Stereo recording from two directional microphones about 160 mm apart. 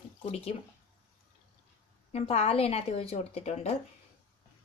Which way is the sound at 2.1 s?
40° left (ahead or behind).